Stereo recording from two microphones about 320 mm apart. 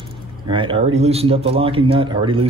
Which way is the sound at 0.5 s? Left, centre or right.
Centre.